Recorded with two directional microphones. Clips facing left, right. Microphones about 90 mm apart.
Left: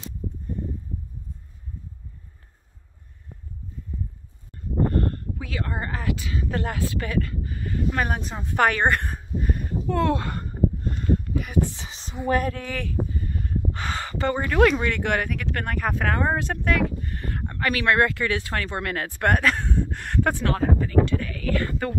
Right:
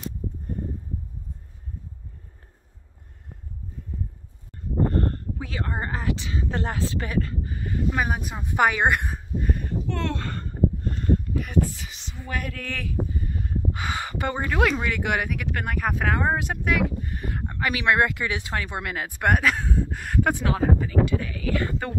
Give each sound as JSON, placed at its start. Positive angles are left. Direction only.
{"t": 4.9, "sound": "speech", "side_deg": -30}
{"t": 8.0, "sound": "speech", "side_deg": -5}
{"t": 9.4, "sound": "a sound", "side_deg": 5}
{"t": 11.7, "sound": "speech", "side_deg": 30}
{"t": 13.3, "sound": "a sound", "side_deg": -15}
{"t": 14.5, "sound": "speech", "side_deg": -5}